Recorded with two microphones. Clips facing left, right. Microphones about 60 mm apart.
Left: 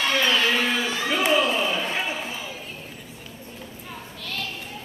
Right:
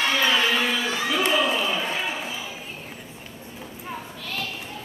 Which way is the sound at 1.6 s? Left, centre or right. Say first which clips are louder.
Even; centre.